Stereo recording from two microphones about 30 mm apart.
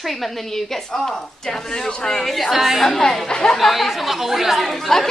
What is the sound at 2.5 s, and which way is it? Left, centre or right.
Speech, centre.